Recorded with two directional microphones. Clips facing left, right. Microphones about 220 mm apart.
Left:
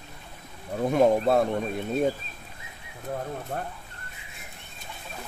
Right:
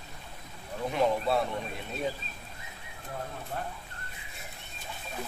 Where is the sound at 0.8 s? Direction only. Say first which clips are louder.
Left 7 dB; 50° left (ahead or behind).